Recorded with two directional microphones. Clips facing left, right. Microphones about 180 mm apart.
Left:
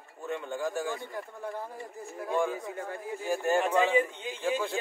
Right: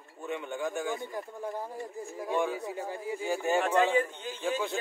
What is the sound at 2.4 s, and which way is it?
Speech, 5° right (ahead or behind).